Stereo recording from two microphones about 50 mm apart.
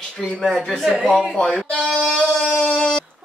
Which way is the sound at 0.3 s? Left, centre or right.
Centre.